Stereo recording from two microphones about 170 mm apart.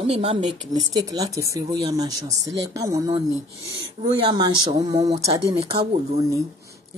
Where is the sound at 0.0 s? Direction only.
35° right (ahead or behind).